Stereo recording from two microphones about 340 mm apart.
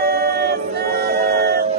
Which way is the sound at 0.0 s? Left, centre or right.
Right.